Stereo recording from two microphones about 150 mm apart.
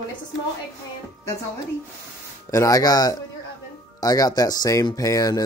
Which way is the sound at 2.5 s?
20° left (ahead or behind).